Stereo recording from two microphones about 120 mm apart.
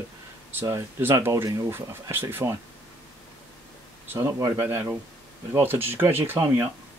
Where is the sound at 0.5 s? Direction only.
20° right (ahead or behind).